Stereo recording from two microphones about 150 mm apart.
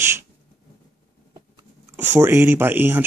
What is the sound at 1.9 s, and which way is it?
Speech, 15° right (ahead or behind).